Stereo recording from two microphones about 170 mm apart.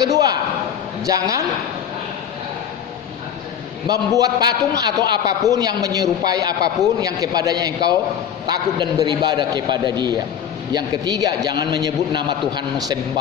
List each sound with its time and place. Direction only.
0.0 s a man's voice: 20° right (ahead or behind)
4.2 s a man's voice: 25° right (ahead or behind)